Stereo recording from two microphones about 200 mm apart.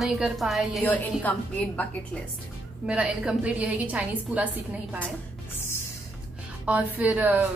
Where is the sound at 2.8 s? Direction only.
5° right (ahead or behind).